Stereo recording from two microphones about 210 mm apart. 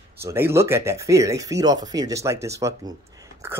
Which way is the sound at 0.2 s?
10° right (ahead or behind).